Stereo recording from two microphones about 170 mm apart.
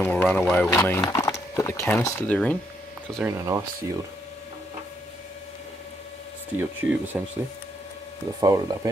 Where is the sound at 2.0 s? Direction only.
15° left (ahead or behind).